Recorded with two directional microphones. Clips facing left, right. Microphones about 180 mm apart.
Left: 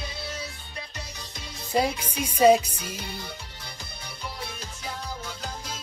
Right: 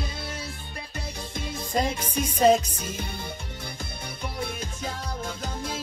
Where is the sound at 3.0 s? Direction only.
50° right (ahead or behind).